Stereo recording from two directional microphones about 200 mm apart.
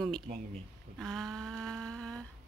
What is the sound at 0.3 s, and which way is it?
Speech, 35° right (ahead or behind).